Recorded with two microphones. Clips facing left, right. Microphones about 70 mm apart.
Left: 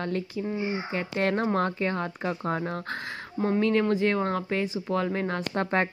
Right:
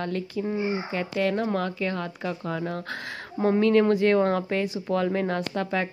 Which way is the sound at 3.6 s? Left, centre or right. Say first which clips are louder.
Right 4 dB; centre.